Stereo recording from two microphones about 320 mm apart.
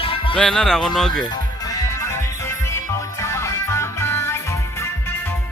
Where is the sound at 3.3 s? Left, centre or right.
Centre.